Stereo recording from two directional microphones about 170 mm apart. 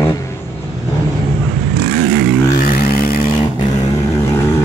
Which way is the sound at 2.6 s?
60° left (ahead or behind).